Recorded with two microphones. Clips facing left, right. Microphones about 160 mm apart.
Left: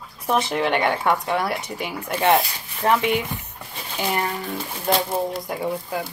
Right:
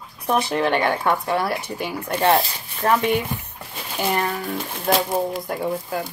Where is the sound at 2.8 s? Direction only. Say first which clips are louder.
Right 1 dB; 20° left (ahead or behind).